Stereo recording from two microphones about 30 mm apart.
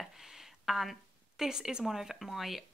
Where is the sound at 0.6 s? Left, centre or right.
Centre.